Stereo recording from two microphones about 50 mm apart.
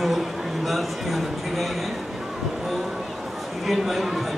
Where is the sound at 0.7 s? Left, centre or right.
Centre.